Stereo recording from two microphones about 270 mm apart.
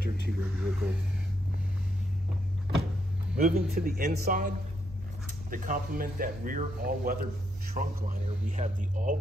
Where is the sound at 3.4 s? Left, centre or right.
Right.